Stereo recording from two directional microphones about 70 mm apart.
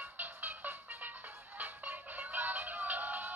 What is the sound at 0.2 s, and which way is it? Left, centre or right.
Music, right.